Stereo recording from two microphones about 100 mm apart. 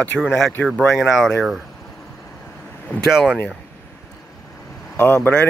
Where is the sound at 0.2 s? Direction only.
5° right (ahead or behind).